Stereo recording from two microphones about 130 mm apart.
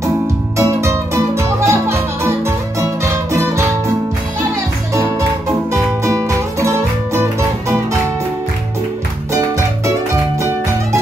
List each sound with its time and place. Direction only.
0.6 s music: 20° right (ahead or behind)
5.7 s music: 25° right (ahead or behind)